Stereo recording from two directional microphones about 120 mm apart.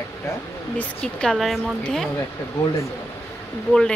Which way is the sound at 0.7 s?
5° left (ahead or behind).